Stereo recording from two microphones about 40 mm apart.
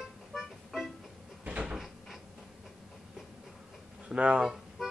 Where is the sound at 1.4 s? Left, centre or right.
Right.